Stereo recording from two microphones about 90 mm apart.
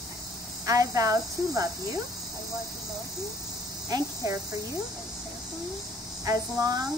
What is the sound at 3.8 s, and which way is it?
Speech, 40° right (ahead or behind).